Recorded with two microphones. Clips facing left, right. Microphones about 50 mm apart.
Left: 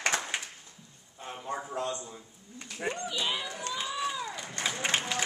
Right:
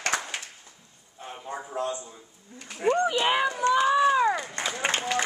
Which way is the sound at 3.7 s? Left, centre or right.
Right.